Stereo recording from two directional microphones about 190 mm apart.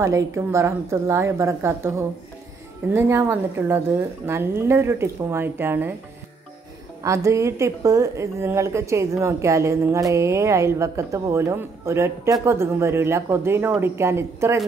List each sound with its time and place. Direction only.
0.0 s a woman's voice: 15° right (ahead or behind)
7.0 s a woman's voice: 15° right (ahead or behind)